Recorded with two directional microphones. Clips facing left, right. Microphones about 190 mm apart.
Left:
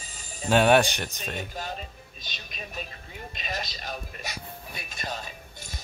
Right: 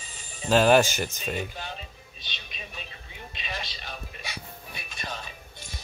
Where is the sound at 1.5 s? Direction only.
40° left (ahead or behind).